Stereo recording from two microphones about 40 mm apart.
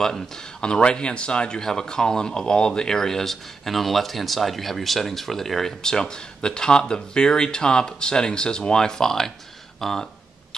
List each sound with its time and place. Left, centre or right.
0.0 s speech: centre